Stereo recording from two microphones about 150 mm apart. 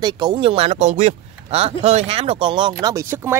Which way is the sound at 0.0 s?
30° right (ahead or behind).